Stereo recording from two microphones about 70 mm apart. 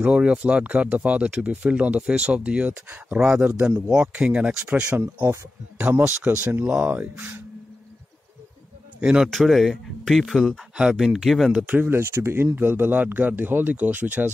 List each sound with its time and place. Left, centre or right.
0.0 s speech: centre
5.0 s speech: right
5.8 s speech: right
9.0 s speech: centre
9.3 s speech: centre
11.6 s speech: right
11.9 s speech: right